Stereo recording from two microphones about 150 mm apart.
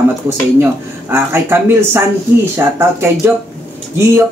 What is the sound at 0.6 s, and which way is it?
Speech, 15° right (ahead or behind).